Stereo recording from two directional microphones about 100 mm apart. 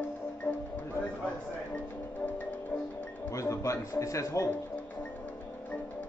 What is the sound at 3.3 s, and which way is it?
A man's voice, 30° left (ahead or behind).